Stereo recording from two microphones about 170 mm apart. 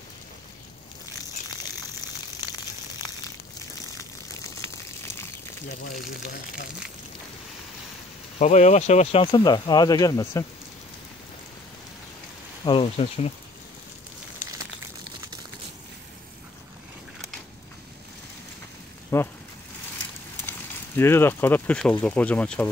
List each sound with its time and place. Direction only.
3.9 s a sound: 20° left (ahead or behind)
8.4 s speech: 40° left (ahead or behind)
9.2 s speech: 25° left (ahead or behind)
12.6 s speech: 35° left (ahead or behind)
14.4 s crumpling: 45° left (ahead or behind)
19.1 s speech: 15° left (ahead or behind)
20.4 s speech: 15° left (ahead or behind)